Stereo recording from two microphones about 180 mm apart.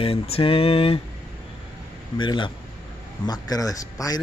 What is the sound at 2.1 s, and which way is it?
Speech, 25° left (ahead or behind).